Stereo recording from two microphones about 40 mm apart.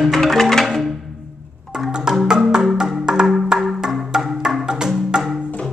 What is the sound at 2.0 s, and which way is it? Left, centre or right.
Music, centre.